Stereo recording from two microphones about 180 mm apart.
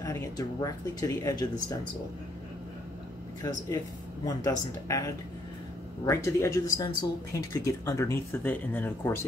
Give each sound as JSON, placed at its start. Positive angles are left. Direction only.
{"t": 0.0, "sound": "speech", "side_deg": 15}
{"t": 3.4, "sound": "speech", "side_deg": 20}